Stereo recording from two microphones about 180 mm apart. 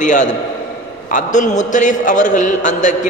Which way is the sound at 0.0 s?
45° left (ahead or behind).